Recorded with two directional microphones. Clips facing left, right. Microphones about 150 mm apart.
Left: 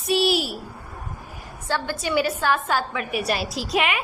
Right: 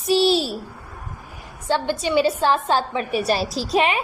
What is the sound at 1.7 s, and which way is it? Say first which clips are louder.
A woman's voice: right 4 dB; 20° right (ahead or behind).